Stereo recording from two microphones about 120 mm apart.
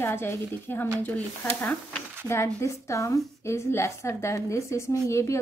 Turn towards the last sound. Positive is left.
turn(degrees=25)  # may be behind; listen again after turning